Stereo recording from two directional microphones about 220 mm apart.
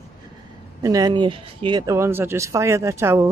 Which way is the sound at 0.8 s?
15° right (ahead or behind).